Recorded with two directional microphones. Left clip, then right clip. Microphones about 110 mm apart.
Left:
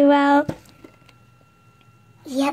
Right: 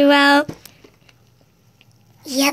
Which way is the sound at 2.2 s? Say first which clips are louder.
Right 4 dB; 5° right (ahead or behind).